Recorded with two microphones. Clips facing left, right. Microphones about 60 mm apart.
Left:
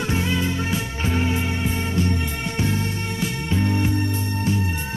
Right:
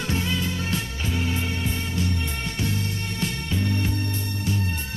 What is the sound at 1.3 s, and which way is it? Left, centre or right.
Music, left.